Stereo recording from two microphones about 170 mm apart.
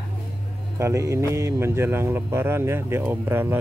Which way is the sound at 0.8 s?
15° right (ahead or behind).